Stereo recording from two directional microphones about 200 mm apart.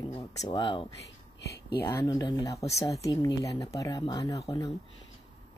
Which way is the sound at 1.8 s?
15° left (ahead or behind).